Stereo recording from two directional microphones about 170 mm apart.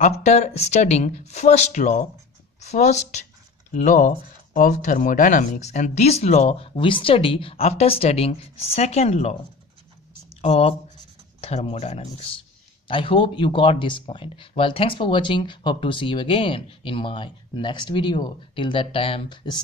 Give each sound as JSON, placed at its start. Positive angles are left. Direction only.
{"t": 0.0, "sound": "speech", "side_deg": 40}
{"t": 10.4, "sound": "speech", "side_deg": 35}